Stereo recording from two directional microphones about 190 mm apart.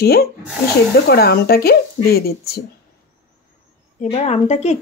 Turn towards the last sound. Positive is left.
turn(degrees=35)  # may be behind; listen again after turning